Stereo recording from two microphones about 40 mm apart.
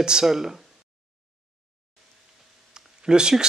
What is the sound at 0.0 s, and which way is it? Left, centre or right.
Speech, centre.